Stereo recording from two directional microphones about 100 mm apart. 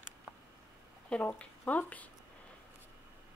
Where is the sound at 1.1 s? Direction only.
10° left (ahead or behind).